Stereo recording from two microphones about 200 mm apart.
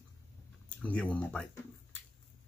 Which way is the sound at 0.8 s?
5° left (ahead or behind).